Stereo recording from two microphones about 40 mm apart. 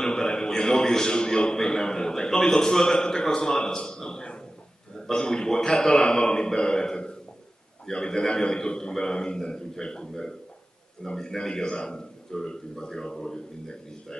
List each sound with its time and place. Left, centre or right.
0.0 s a man's voice: centre